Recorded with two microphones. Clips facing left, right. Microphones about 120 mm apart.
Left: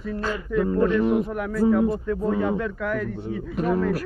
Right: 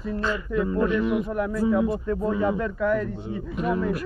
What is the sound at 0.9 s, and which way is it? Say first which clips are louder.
Speech: left 2 dB; 40° left (ahead or behind).